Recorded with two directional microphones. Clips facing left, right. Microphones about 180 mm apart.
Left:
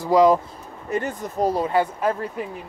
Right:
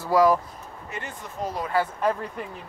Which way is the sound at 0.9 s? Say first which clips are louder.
Left 11 dB; 40° left (ahead or behind).